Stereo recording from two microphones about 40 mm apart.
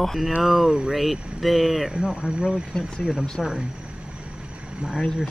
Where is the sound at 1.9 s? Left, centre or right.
Right.